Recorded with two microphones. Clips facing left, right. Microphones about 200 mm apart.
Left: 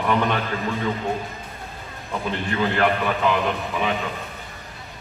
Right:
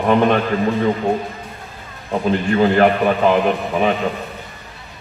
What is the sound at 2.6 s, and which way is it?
A man's voice, 45° right (ahead or behind).